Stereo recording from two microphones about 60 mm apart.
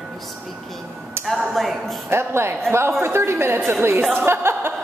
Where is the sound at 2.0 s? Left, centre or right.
Right.